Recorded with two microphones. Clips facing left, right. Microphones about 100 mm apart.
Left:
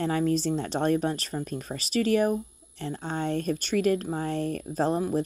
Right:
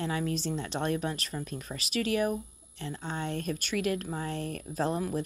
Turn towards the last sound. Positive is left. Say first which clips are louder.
# left 5 dB
turn(degrees=30)  # may be behind; listen again after turning